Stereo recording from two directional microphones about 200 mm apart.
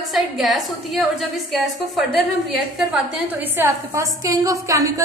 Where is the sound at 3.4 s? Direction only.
10° right (ahead or behind).